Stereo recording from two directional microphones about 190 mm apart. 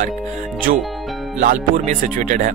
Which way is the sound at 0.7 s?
45° right (ahead or behind).